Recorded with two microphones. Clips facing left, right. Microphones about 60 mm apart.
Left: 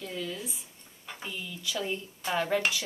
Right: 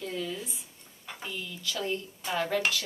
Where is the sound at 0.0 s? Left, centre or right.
Centre.